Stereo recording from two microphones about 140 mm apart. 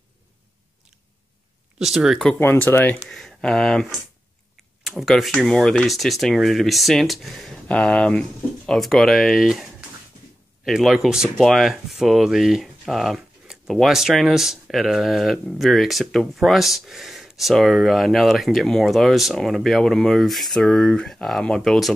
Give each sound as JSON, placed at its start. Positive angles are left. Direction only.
{"t": 1.8, "sound": "speech", "side_deg": -5}
{"t": 2.4, "sound": "speech", "side_deg": 15}
{"t": 3.1, "sound": "speech", "side_deg": 5}